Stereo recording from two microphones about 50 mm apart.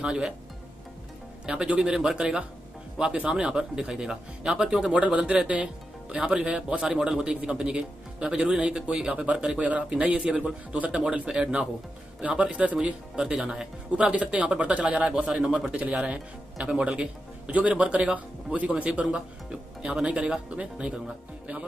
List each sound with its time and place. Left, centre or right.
0.0 s speech: centre
1.4 s speech: centre
5.0 s speech: right
13.1 s speech: centre